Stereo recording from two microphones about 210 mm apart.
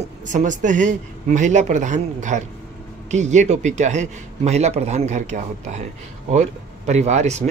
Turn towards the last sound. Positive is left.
turn(degrees=-30)  # may be behind; listen again after turning